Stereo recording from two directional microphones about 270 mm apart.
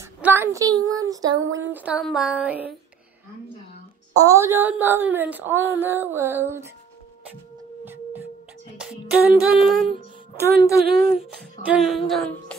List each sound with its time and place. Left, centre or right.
0.0 s female singing: centre
1.7 s music: centre
4.1 s speech: centre
7.8 s a sound: centre
8.7 s music: centre
10.6 s speech: centre
11.6 s music: centre